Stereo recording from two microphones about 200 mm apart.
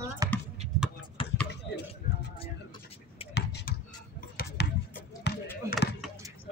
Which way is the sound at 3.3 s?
55° left (ahead or behind).